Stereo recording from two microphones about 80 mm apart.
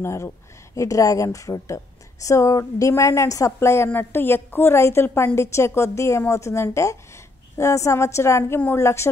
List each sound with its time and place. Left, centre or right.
0.0 s a woman's voice: left